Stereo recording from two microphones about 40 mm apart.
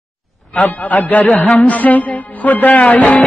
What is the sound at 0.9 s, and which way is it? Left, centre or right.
Music, left.